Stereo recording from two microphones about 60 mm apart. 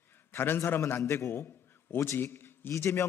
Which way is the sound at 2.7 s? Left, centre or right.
Left.